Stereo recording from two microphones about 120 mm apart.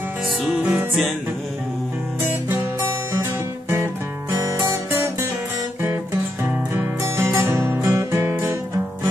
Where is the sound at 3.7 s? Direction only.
25° right (ahead or behind).